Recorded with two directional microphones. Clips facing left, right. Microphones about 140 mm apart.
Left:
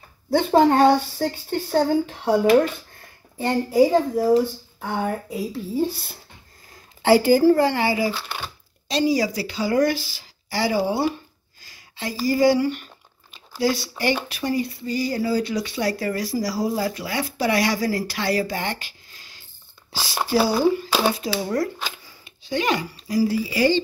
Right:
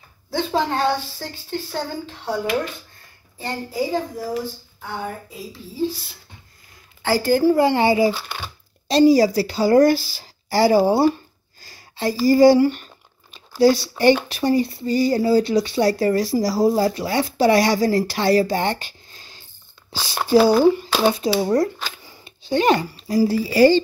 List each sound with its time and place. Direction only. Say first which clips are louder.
0.3 s a woman's voice: left 6 dB; 50° left (ahead or behind)
5.3 s a woman's voice: left 9 dB; 60° left (ahead or behind)
7.0 s a woman's voice: left 5 dB; 25° left (ahead or behind)
7.2 s a woman's voice: right 1 dB; 5° left (ahead or behind)
7.5 s speech: right 4 dB; 20° right (ahead or behind)
8.8 s speech: right 7 dB; 35° right (ahead or behind)
11.6 s a sound: right 8 dB; 35° right (ahead or behind)
14.3 s speech: right 5 dB; 30° right (ahead or behind)
20.6 s speech: right 3 dB; 20° right (ahead or behind); by 23.8 s 35° right (ahead or behind)